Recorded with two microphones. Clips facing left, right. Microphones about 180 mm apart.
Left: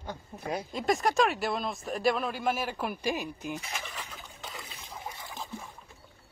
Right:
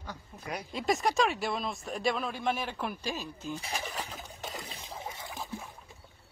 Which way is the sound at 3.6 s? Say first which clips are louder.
Right 3 dB; 35° right (ahead or behind).